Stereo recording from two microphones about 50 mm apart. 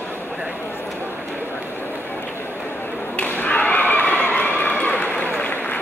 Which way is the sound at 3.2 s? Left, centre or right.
Left.